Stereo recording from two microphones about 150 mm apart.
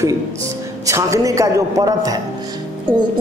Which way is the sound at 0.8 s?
20° right (ahead or behind).